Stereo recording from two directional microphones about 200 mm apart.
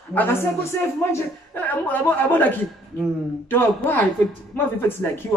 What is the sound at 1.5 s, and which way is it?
Speech, 10° left (ahead or behind).